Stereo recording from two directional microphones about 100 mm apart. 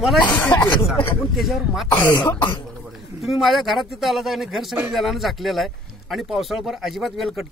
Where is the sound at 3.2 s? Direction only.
Centre (ahead or behind).